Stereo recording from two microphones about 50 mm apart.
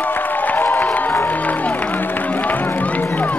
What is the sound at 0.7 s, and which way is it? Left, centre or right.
Music, left.